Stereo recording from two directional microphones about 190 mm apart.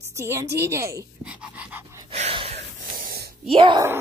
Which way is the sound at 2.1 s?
35° right (ahead or behind).